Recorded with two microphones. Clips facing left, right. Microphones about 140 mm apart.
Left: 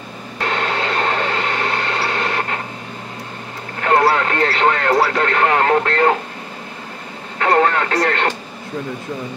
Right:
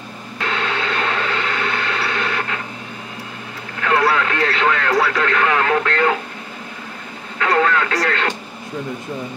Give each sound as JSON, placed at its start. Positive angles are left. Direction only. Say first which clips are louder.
{"t": 0.4, "sound": "a sound", "louder": "left 2 dB", "side_deg": 40}
{"t": 3.8, "sound": "radio", "louder": "left 2 dB", "side_deg": 35}
{"t": 7.3, "sound": "radio", "louder": "left 2 dB", "side_deg": 35}